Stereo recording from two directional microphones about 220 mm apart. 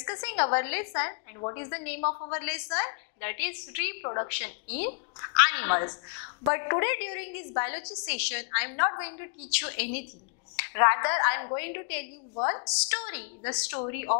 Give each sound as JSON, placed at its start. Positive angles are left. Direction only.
{"t": 0.2, "sound": "a woman's voice", "side_deg": 10}
{"t": 2.0, "sound": "a woman's voice", "side_deg": 30}
{"t": 2.3, "sound": "a woman's voice", "side_deg": 10}